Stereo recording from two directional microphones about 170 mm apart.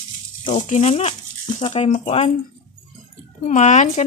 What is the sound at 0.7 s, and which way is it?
Speech, 40° left (ahead or behind).